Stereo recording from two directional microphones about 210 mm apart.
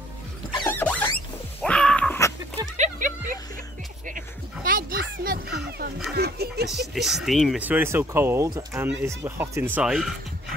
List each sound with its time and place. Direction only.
0.7 s vehicle: 10° left (ahead or behind)
1.6 s music: 5° left (ahead or behind)
2.8 s music: 40° right (ahead or behind)
4.6 s a sound: 40° right (ahead or behind)
6.7 s speech: centre (ahead or behind)
9.8 s speech: centre (ahead or behind)